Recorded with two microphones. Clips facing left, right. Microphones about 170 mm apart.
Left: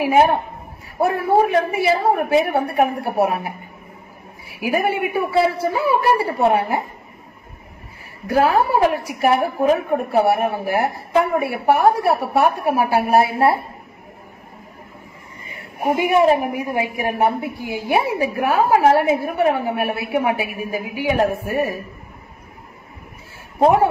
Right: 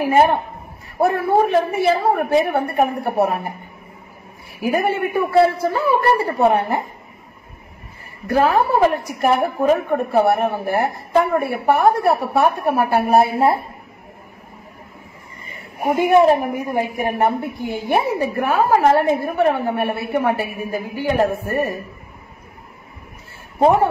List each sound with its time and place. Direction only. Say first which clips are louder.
0.0 s a woman's voice: even; 5° left (ahead or behind)
4.6 s a woman's voice: right 1 dB; 5° left (ahead or behind)
8.3 s a woman's voice: even; 5° left (ahead or behind)
15.9 s a woman's voice: right 2 dB; 10° left (ahead or behind)
23.6 s a woman's voice: even; 10° left (ahead or behind)